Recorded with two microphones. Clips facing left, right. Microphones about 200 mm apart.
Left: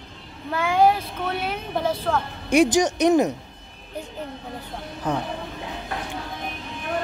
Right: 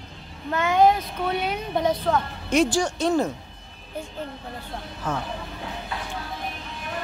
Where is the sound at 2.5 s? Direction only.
15° left (ahead or behind).